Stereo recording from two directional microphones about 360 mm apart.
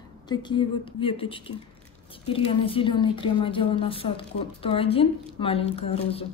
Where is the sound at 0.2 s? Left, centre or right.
Centre.